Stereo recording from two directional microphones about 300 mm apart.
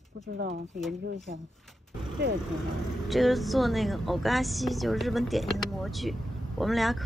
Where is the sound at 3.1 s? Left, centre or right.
Centre.